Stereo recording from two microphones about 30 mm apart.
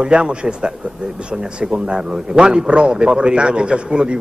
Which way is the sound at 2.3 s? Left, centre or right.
Right.